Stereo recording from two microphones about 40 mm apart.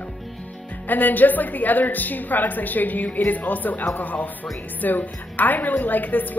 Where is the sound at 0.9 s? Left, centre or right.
Left.